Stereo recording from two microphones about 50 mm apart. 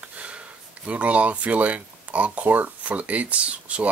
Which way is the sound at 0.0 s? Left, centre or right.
Right.